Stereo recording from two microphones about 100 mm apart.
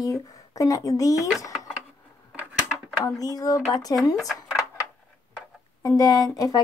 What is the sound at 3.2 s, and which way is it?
Speech, 40° left (ahead or behind).